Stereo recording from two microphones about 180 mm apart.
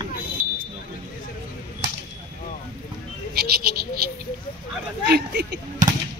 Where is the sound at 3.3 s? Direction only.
60° right (ahead or behind).